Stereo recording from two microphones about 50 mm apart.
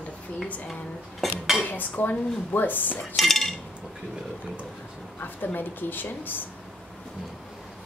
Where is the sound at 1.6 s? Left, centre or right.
Left.